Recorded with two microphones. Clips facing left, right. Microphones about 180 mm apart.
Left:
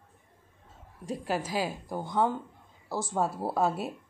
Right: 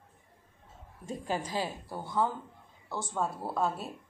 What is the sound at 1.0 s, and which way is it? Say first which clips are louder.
A woman's voice: left 3 dB; centre (ahead or behind).